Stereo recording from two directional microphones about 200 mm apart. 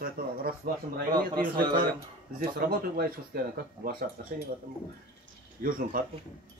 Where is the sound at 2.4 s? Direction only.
45° right (ahead or behind).